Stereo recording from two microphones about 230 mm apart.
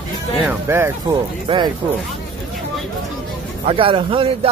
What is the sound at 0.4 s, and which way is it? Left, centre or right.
Speech, centre.